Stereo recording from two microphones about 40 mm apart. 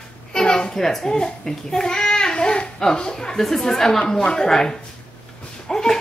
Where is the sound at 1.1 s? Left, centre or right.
Centre.